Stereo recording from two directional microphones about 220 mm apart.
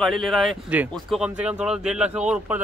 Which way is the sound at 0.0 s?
Centre (ahead or behind).